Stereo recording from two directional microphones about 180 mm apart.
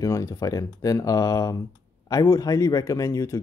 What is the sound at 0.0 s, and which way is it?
Speech, 20° left (ahead or behind).